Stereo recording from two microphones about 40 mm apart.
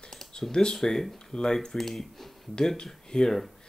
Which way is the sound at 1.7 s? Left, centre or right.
Centre.